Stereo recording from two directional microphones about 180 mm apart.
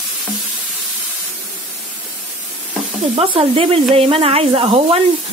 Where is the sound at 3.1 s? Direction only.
30° right (ahead or behind).